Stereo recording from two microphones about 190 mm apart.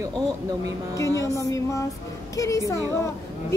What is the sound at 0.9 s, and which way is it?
A woman's voice, 15° left (ahead or behind).